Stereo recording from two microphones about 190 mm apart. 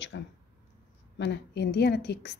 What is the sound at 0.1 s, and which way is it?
Speech, 70° left (ahead or behind).